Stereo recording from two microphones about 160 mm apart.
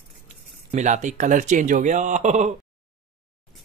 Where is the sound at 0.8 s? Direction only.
50° right (ahead or behind).